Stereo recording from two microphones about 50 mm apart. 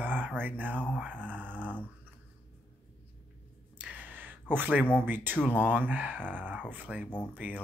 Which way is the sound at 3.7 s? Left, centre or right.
Right.